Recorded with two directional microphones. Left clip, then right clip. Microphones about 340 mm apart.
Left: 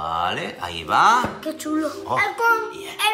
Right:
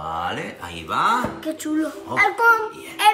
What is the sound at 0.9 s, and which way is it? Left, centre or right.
Speech, centre.